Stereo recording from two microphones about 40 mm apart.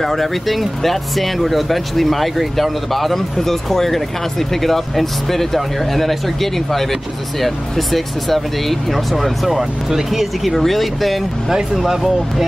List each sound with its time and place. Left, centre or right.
0.0 s speech: centre